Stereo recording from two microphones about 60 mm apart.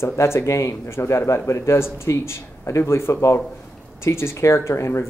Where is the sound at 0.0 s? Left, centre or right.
Left.